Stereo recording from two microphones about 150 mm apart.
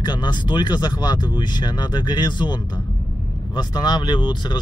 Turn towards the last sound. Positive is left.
turn(degrees=30)  # may be behind; listen again after turning